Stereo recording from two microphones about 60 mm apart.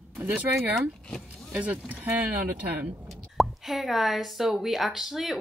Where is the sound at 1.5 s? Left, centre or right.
Right.